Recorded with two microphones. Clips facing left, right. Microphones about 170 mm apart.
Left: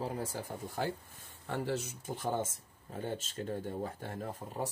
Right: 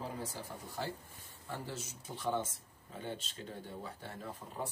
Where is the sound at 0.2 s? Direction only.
50° left (ahead or behind).